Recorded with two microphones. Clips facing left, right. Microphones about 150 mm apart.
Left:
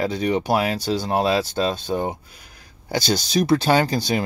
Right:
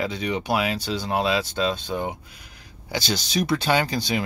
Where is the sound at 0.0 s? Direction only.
40° left (ahead or behind).